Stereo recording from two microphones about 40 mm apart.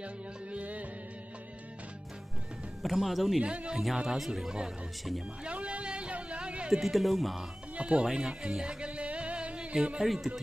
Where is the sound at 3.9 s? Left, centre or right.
Centre.